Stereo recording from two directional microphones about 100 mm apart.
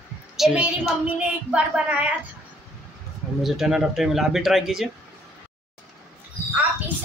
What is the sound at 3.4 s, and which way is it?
Speech, 5° right (ahead or behind).